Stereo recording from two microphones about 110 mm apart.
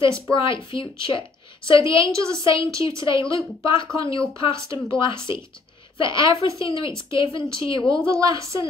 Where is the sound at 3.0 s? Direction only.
50° left (ahead or behind).